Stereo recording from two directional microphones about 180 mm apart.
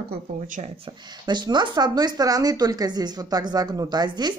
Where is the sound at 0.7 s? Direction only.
25° right (ahead or behind).